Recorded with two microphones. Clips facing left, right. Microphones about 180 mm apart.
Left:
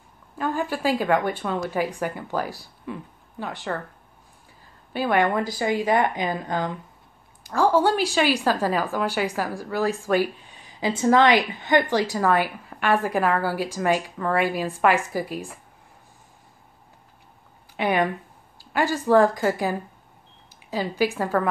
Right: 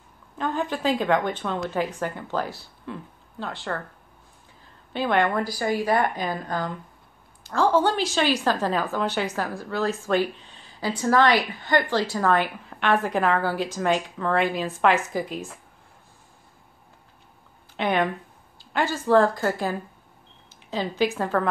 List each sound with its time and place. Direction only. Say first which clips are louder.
0.4 s a woman's voice: left 1 dB; 5° left (ahead or behind)
4.9 s a woman's voice: left 1 dB; 10° left (ahead or behind)
17.7 s a woman's voice: left 1 dB; 10° left (ahead or behind)